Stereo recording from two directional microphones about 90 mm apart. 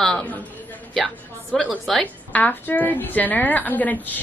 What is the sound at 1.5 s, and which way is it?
Speech, 5° left (ahead or behind).